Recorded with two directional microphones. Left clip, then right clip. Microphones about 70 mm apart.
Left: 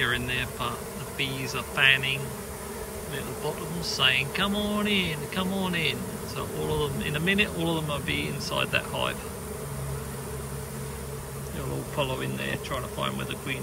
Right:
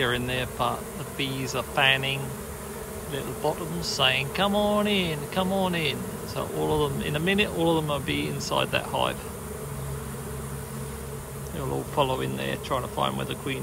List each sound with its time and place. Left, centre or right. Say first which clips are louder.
0.0 s speech: right 1 dB; right
11.9 s speech: right 4 dB; right